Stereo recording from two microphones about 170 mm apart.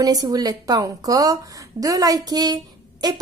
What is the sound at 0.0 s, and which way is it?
A woman's voice, 20° right (ahead or behind).